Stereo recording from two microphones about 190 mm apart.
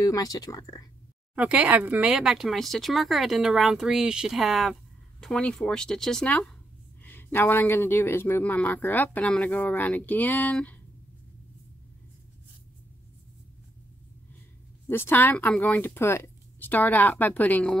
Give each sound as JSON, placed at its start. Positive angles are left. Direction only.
{"t": 0.0, "sound": "speech", "side_deg": 20}
{"t": 1.3, "sound": "speech", "side_deg": -5}
{"t": 14.9, "sound": "speech", "side_deg": 10}